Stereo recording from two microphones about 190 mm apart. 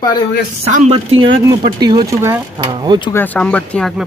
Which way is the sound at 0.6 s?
35° right (ahead or behind).